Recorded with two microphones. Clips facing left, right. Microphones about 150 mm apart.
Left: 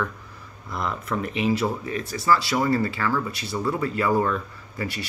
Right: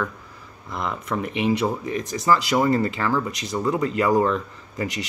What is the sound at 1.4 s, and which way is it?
Speech, 25° right (ahead or behind).